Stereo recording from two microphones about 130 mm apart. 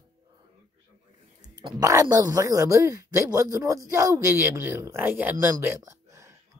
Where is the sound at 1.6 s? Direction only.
30° right (ahead or behind).